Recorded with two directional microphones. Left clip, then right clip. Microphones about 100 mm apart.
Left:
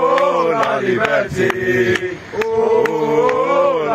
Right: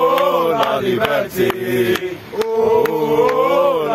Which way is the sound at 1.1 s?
20° right (ahead or behind).